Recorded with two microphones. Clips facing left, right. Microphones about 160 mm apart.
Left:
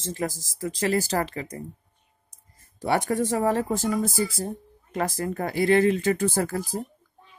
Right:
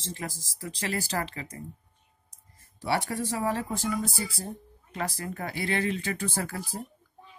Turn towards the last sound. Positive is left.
turn(degrees=45)  # may be behind; listen again after turning